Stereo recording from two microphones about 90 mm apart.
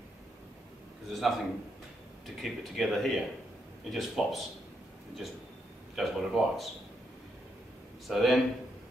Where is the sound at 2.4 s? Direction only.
Centre (ahead or behind).